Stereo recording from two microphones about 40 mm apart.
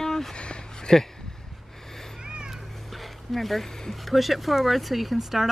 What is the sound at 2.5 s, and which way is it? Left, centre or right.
Speech, centre.